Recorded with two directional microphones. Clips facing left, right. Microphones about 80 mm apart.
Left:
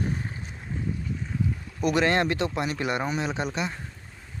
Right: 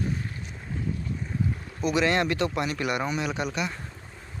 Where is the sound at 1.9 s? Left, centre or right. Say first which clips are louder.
Even; left.